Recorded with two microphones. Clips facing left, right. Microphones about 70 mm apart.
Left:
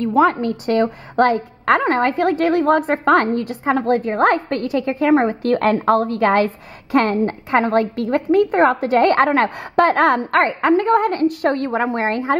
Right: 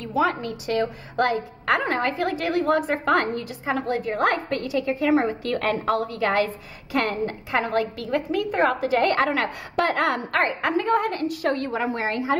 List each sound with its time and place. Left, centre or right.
0.0 s a woman's voice: left